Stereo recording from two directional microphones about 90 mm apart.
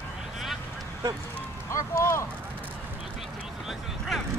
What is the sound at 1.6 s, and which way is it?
Clip-clop, 30° left (ahead or behind).